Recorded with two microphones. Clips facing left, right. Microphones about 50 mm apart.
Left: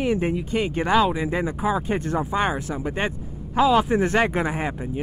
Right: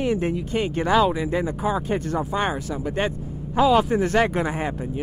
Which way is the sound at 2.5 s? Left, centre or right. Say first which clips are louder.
Right 1 dB; centre.